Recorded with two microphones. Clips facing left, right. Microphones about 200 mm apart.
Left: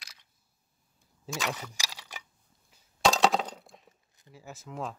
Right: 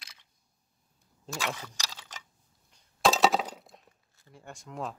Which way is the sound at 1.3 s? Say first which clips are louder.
Left 1 dB; centre (ahead or behind).